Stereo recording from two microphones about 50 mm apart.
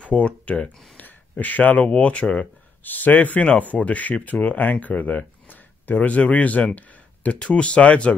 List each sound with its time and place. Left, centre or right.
0.0 s speech: left
2.8 s speech: left